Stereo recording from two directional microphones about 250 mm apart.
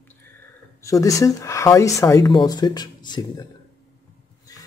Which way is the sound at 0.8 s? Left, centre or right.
Centre.